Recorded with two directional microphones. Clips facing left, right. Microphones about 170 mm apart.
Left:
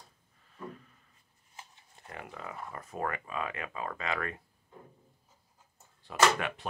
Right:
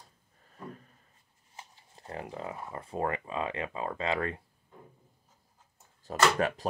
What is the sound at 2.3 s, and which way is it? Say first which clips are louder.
Speech: right 4 dB; 25° right (ahead or behind).